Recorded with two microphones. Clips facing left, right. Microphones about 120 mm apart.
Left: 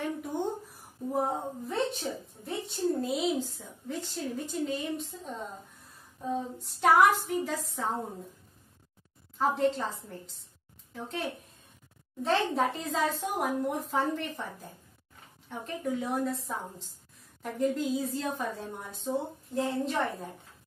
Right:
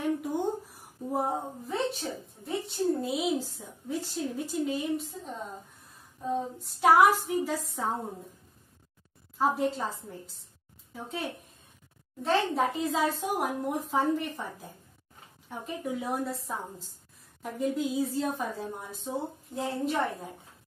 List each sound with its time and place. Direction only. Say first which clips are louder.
0.0 s a sound: right 3 dB; 10° right (ahead or behind)
1.1 s a woman's voice: even; 5° right (ahead or behind)
6.6 s a woman's voice: right 1 dB; 5° right (ahead or behind)
7.5 s a woman's voice: right 1 dB; 10° right (ahead or behind)
9.4 s a woman's voice: even; 5° right (ahead or behind)